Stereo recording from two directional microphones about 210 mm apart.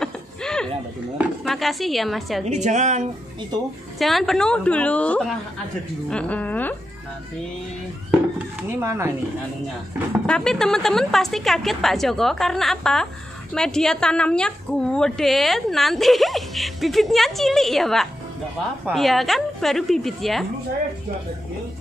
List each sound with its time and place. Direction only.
0.0 s a sound: 5° left (ahead or behind)
1.1 s a woman's voice: 5° right (ahead or behind)
2.4 s a woman's voice: 35° right (ahead or behind)
4.0 s a woman's voice: centre (ahead or behind)
8.6 s speech: 10° right (ahead or behind)
10.2 s a woman's voice: 5° left (ahead or behind)